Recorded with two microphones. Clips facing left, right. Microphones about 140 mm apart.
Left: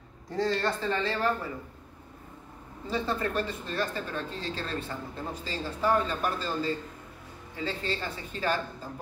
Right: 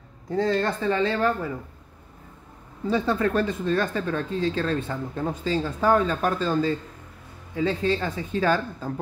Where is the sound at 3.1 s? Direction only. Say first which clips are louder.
Right 6 dB; 60° right (ahead or behind).